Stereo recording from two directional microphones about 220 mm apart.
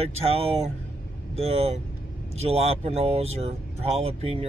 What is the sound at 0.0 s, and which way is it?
Speech, 25° right (ahead or behind).